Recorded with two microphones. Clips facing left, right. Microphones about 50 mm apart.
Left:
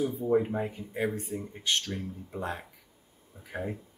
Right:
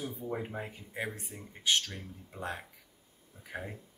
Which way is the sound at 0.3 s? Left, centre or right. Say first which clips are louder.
Left 12 dB; centre.